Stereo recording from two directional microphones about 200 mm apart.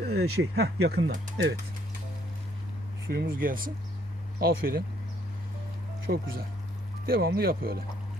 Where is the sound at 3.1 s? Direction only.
50° right (ahead or behind).